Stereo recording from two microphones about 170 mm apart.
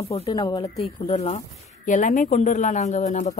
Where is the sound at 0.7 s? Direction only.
40° left (ahead or behind).